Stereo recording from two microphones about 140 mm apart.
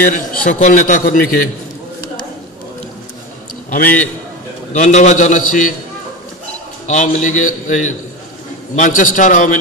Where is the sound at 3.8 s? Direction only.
10° left (ahead or behind).